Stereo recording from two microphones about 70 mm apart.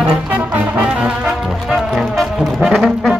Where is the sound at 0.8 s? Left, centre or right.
Centre.